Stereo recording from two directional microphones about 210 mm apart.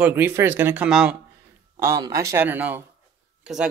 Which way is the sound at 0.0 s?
10° right (ahead or behind).